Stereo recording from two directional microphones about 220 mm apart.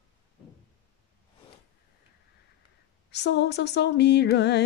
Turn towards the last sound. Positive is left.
turn(degrees=50)  # may be behind; listen again after turning